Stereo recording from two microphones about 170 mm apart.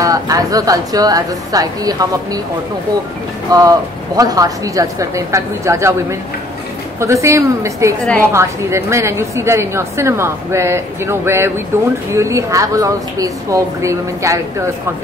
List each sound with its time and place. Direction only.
0.0 s a woman's voice: 20° right (ahead or behind)
3.5 s a woman's voice: 20° right (ahead or behind)
7.0 s a woman's voice: 15° right (ahead or behind)
8.0 s a woman's voice: 5° left (ahead or behind)
8.3 s a woman's voice: 15° right (ahead or behind)